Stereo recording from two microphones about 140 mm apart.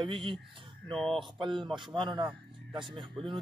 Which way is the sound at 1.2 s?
35° right (ahead or behind).